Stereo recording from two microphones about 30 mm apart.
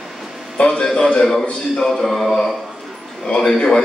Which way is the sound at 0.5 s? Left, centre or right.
Left.